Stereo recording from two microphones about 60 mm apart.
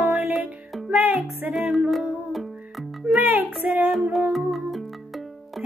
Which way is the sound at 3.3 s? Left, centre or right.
Right.